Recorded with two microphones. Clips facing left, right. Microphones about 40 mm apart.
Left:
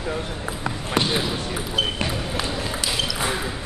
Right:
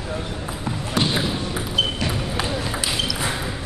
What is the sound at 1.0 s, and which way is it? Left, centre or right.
Basketball bounce, centre.